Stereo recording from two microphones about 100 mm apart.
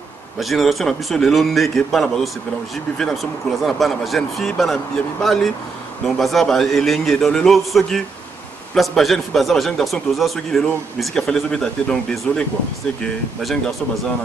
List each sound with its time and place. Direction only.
0.4 s a man's voice: centre (ahead or behind)